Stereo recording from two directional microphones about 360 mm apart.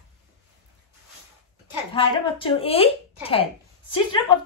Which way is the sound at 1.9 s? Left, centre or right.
Centre.